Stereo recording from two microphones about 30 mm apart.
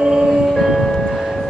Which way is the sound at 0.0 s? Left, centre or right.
Centre.